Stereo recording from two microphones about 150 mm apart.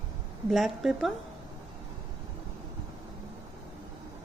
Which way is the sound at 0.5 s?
Centre (ahead or behind).